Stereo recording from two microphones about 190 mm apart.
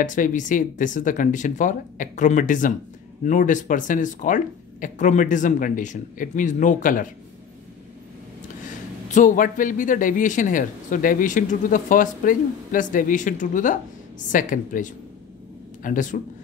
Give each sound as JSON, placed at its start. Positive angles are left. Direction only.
{"t": 0.0, "sound": "speech", "side_deg": 40}
{"t": 9.1, "sound": "speech", "side_deg": 45}